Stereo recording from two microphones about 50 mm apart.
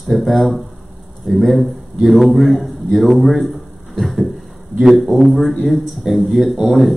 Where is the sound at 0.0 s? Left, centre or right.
Centre.